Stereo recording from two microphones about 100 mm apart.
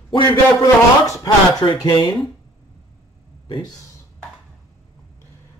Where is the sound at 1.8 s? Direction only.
55° left (ahead or behind).